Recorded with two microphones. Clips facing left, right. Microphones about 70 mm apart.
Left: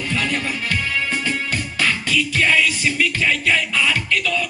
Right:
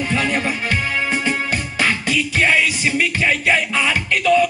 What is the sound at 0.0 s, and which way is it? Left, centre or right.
Music, right.